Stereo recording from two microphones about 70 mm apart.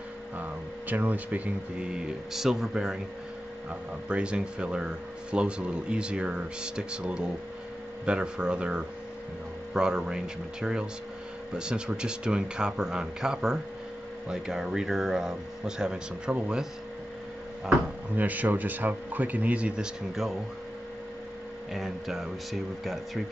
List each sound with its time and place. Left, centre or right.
0.4 s speech: right
2.3 s speech: centre
4.1 s speech: centre
18.1 s speech: right
21.7 s speech: centre